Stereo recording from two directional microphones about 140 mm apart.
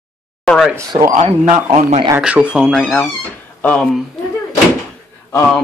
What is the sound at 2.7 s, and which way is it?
Speech, 5° left (ahead or behind).